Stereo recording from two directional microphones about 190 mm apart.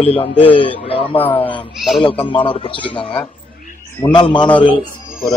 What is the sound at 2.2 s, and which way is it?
A man's voice, 25° left (ahead or behind).